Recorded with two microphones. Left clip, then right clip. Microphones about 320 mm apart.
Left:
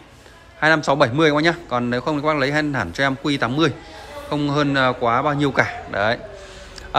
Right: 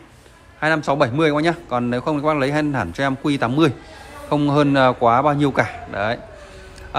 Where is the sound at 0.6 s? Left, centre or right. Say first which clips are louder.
Left 2 dB; centre.